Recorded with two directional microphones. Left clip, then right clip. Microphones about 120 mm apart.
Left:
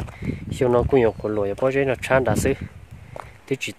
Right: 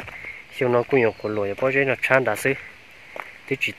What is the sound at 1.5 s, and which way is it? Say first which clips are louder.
Speech: right 1 dB; 35° left (ahead or behind).